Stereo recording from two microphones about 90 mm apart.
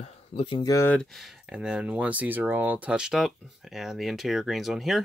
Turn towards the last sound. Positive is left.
turn(degrees=0)  # may be behind; listen again after turning